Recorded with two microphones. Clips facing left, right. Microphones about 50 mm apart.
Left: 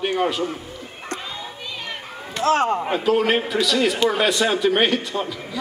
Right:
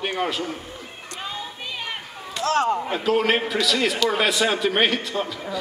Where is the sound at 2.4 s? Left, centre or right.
Left.